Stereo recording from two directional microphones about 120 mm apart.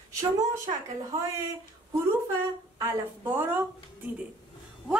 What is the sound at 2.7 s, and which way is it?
Speech, 30° right (ahead or behind).